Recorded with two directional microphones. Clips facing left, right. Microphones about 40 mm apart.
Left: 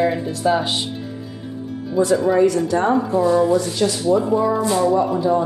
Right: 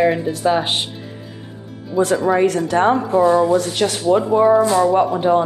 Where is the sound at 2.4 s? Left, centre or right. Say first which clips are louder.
Right 1 dB; right.